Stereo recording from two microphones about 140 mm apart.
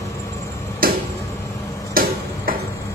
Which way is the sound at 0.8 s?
90° right.